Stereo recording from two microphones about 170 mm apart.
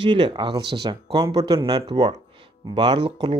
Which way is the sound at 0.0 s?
25° right (ahead or behind).